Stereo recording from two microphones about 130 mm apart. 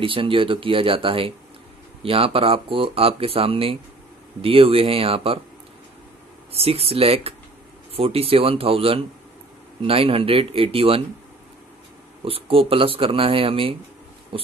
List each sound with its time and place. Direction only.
0.0 s speech: 40° right (ahead or behind)
6.5 s speech: 50° right (ahead or behind)
12.3 s speech: 45° right (ahead or behind)
14.3 s a sound: 40° right (ahead or behind)